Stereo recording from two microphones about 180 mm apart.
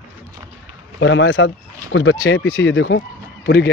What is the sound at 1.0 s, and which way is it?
Speech, 90° left.